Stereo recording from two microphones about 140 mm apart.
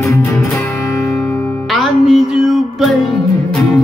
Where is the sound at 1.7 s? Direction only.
Centre (ahead or behind).